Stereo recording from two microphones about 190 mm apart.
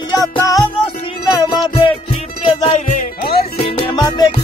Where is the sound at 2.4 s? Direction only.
35° left (ahead or behind).